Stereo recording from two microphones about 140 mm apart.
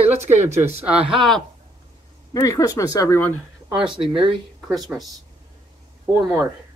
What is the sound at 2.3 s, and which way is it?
Speech, 25° left (ahead or behind).